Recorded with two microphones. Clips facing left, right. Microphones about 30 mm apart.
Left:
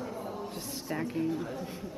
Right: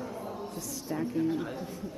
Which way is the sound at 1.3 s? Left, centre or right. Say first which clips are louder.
Right 2 dB; centre.